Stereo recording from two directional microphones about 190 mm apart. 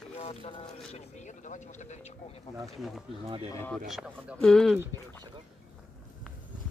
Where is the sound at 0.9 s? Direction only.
35° left (ahead or behind).